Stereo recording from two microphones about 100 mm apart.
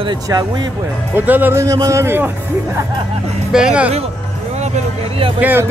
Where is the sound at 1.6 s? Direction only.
30° right (ahead or behind).